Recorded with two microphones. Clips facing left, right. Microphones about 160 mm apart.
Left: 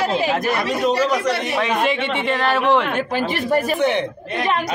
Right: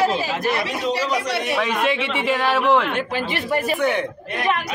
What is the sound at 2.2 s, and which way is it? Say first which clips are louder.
Speech: even; 5° right (ahead or behind).